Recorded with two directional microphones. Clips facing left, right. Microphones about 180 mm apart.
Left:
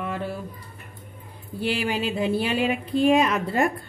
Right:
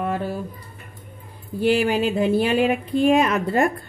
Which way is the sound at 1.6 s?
45° right (ahead or behind).